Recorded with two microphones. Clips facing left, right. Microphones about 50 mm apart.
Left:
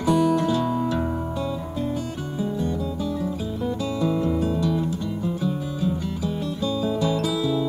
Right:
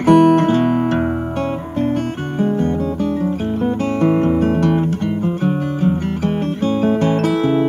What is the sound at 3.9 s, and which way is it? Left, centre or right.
Guitar, right.